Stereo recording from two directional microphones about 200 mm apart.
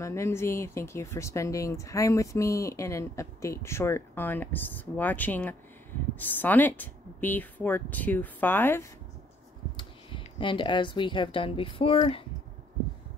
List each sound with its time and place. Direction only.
0.0 s speech: 15° left (ahead or behind)
9.8 s speech: 25° left (ahead or behind)